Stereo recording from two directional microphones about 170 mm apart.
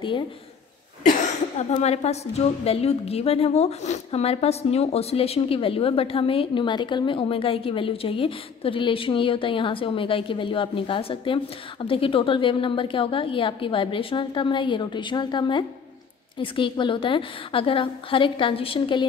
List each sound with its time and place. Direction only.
1.0 s a woman's voice: 45° left (ahead or behind)